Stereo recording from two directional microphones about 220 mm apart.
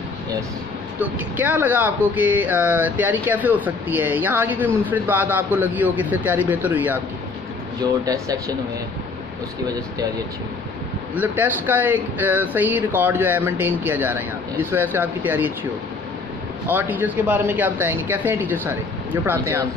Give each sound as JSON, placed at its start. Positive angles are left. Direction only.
{"t": 0.9, "sound": "speech", "side_deg": -5}
{"t": 11.1, "sound": "speech", "side_deg": -10}
{"t": 16.6, "sound": "speech", "side_deg": -10}